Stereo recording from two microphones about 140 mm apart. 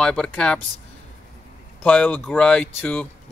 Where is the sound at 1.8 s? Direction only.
10° left (ahead or behind).